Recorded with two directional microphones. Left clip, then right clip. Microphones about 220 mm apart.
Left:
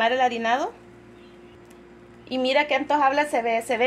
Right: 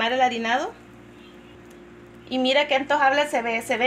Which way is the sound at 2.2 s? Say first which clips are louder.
Right 1 dB; 40° left (ahead or behind).